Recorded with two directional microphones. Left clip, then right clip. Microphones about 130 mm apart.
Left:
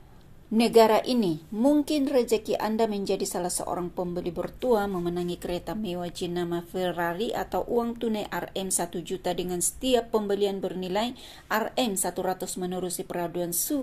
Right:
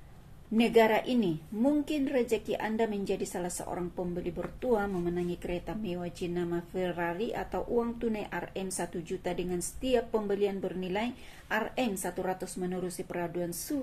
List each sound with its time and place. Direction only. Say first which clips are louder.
0.6 s a woman's voice: left 5 dB; 20° left (ahead or behind)